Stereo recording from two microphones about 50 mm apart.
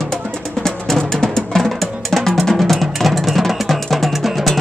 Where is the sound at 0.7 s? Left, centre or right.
Centre.